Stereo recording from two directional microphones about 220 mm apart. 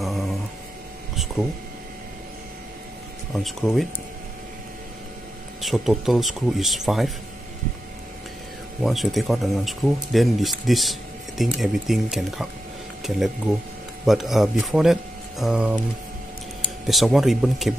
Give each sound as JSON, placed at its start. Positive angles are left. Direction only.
{"t": 0.0, "sound": "a sound", "side_deg": 0}
{"t": 3.3, "sound": "speech", "side_deg": 0}
{"t": 5.6, "sound": "speech", "side_deg": 0}
{"t": 8.8, "sound": "speech", "side_deg": 0}
{"t": 16.8, "sound": "speech", "side_deg": 0}